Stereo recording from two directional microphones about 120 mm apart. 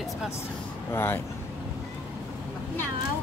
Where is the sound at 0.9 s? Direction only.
20° left (ahead or behind).